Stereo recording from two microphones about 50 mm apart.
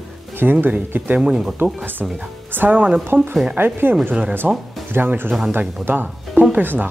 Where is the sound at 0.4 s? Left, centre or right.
Right.